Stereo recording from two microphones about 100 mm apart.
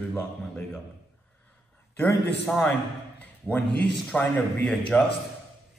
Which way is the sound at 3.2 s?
15° left (ahead or behind).